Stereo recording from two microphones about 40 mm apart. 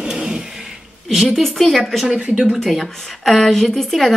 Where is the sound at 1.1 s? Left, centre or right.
Centre.